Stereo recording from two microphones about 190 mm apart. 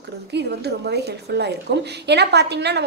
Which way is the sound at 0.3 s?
60° right (ahead or behind).